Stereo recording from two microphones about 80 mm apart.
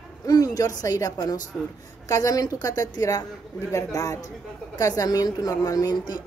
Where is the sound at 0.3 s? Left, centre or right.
Left.